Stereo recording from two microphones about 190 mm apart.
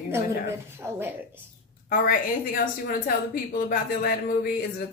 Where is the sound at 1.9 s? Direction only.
50° left (ahead or behind).